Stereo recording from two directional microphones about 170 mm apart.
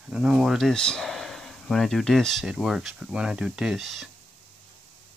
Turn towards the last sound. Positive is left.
turn(degrees=0)  # may be behind; listen again after turning